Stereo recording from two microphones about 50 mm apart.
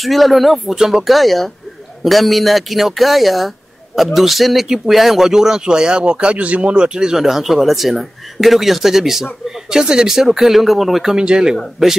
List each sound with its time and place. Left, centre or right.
0.0 s speech: centre
11.1 s speech: centre